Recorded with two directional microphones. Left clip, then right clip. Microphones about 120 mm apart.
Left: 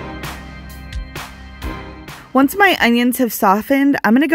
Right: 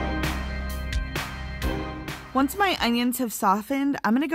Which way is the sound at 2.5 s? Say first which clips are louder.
Left 12 dB; 65° left (ahead or behind).